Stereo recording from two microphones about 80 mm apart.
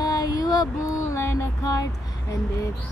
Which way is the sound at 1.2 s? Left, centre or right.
Left.